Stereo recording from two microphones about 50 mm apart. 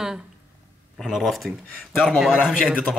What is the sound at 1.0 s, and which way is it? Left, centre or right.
A man's voice, centre.